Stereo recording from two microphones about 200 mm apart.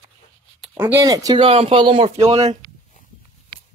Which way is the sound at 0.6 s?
10° right (ahead or behind).